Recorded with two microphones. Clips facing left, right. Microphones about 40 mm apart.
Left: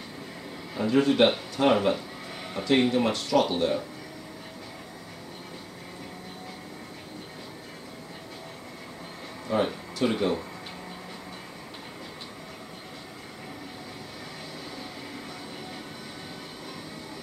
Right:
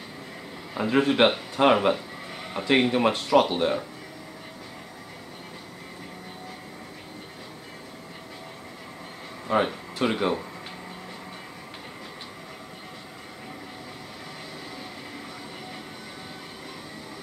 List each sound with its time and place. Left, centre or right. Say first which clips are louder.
0.7 s speech: even; right
9.5 s speech: right 2 dB; right